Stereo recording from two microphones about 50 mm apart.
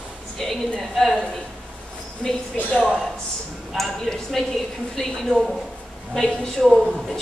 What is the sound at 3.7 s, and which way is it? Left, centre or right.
A woman's voice, centre.